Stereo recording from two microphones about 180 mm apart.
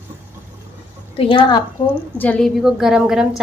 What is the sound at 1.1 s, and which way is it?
Speech, 30° left (ahead or behind).